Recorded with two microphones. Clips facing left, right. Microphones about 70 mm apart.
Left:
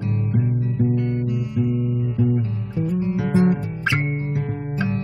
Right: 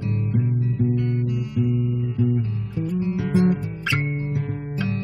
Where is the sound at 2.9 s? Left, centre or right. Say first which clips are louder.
Left 1 dB; left.